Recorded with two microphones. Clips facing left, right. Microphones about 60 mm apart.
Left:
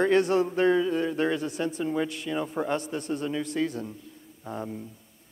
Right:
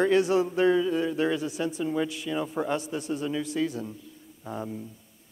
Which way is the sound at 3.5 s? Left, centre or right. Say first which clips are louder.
Even; centre.